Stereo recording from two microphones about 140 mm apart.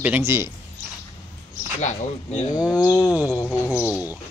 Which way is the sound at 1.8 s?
60° left (ahead or behind).